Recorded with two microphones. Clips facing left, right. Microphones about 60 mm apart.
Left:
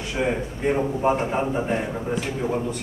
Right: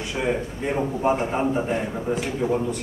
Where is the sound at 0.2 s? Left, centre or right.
Centre.